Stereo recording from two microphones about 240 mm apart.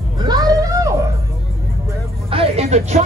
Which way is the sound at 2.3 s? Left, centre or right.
Right.